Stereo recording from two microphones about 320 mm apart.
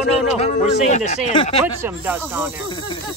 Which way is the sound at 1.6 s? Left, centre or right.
Centre.